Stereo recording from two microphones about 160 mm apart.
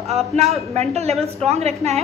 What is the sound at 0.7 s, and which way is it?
A woman's voice, 40° right (ahead or behind).